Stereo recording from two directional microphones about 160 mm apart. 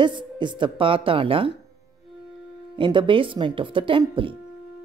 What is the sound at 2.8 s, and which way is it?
A woman's voice, 30° right (ahead or behind).